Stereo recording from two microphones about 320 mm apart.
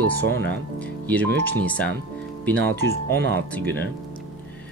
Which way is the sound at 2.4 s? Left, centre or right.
Centre.